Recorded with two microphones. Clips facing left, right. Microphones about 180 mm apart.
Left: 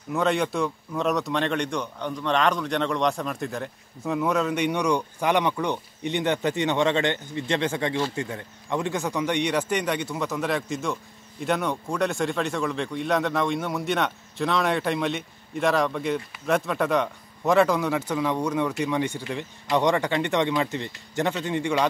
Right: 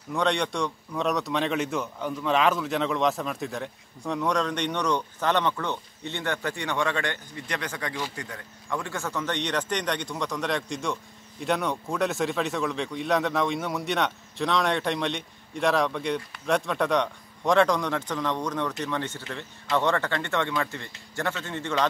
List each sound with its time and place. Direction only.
0.1 s speech: 5° left (ahead or behind)